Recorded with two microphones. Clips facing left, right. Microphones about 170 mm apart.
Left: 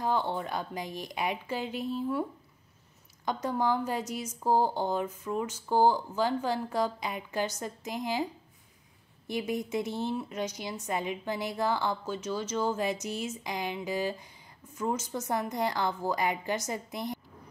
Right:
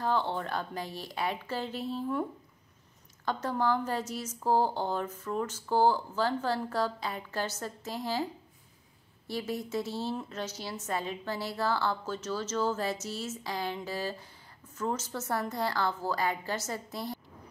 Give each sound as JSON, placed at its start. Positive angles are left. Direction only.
{"t": 0.0, "sound": "speech", "side_deg": 15}
{"t": 3.3, "sound": "speech", "side_deg": 15}
{"t": 9.3, "sound": "speech", "side_deg": 15}